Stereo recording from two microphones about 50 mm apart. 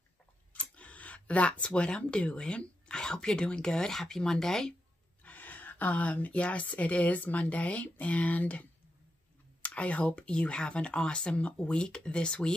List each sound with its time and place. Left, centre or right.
0.5 s speech: left; by 4.7 s centre
5.2 s speech: left; by 12.5 s centre